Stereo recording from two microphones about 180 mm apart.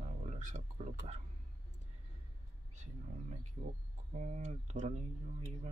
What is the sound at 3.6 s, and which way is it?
Speech, 40° right (ahead or behind).